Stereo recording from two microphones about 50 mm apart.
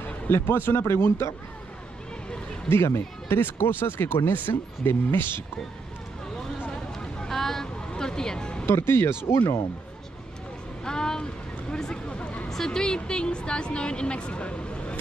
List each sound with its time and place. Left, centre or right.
0.3 s speech: left
2.7 s speech: left
3.3 s speech: left
7.0 s music: centre
8.6 s speech: left
10.8 s a sound: centre
12.4 s a woman's voice: centre